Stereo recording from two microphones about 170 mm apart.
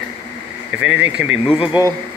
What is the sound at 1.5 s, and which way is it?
Speech, 30° left (ahead or behind).